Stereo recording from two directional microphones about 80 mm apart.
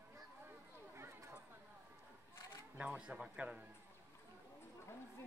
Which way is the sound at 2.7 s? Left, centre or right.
Centre.